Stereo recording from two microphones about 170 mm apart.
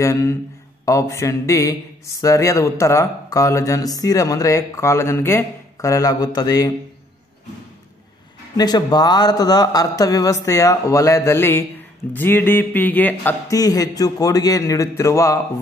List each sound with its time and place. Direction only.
0.0 s a man's voice: 15° left (ahead or behind)
8.5 s a man's voice: 25° left (ahead or behind)